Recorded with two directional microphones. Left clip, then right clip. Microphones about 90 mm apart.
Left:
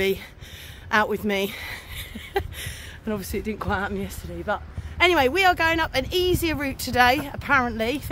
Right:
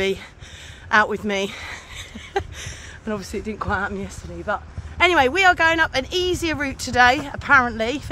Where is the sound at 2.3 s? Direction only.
20° left (ahead or behind).